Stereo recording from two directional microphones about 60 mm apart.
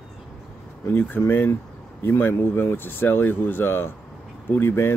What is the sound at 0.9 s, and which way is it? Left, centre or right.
Speech, left.